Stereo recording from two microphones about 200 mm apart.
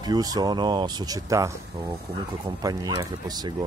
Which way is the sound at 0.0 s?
20° right (ahead or behind).